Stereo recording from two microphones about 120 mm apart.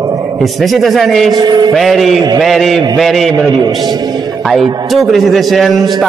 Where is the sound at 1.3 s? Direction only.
35° right (ahead or behind).